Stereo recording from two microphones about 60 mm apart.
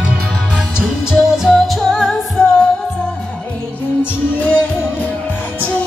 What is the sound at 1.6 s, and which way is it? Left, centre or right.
Music, centre.